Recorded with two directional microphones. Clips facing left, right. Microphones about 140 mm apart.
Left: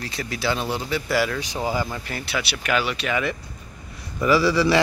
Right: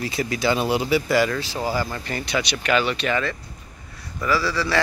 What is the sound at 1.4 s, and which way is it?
Speech, 20° left (ahead or behind).